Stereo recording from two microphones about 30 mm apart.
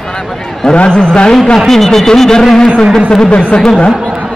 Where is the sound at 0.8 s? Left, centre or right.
Left.